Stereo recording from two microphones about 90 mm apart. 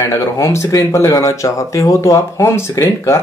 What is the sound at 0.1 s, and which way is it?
Speech, 30° left (ahead or behind).